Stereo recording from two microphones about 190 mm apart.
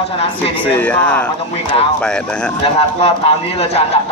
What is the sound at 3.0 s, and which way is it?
Speech, 30° left (ahead or behind).